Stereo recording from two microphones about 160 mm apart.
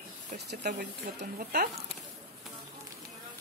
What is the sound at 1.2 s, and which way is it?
Speech, 80° right.